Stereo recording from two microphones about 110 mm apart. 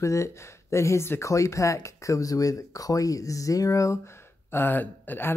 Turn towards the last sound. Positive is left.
turn(degrees=20)  # may be behind; listen again after turning